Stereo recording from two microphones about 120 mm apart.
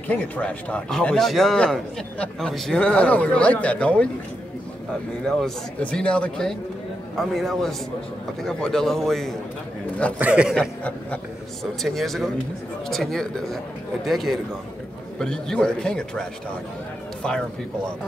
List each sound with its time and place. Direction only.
0.1 s a man's voice: 10° left (ahead or behind)
5.2 s a man's voice: 10° left (ahead or behind)
10.1 s a man's voice: 10° right (ahead or behind)
10.5 s a man's voice: 5° left (ahead or behind)